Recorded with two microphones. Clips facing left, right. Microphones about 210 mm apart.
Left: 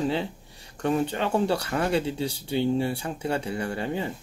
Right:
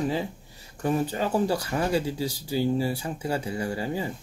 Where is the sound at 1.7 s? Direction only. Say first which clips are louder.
Even; 15° right (ahead or behind).